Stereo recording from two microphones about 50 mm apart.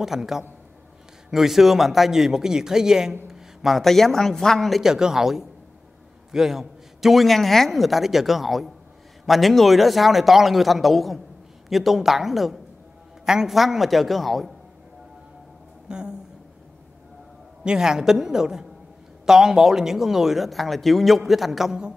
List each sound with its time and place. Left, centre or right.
0.0 s a man's voice: centre
4.8 s speech: centre
15.9 s a sound: centre
17.6 s speech: centre